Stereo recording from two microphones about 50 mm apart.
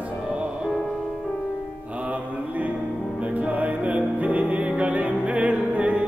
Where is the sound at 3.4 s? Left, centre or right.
Right.